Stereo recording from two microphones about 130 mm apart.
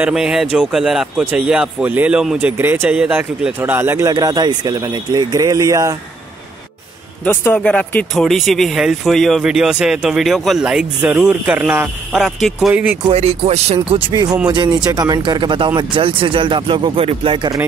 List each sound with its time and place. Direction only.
0.0 s a man's voice: 5° right (ahead or behind); by 5.9 s 25° right (ahead or behind)
7.2 s speech: 15° left (ahead or behind); by 11.9 s 15° right (ahead or behind)
12.1 s speech: centre (ahead or behind)
13.1 s speech: 55° right (ahead or behind)
13.9 s speech: 35° right (ahead or behind)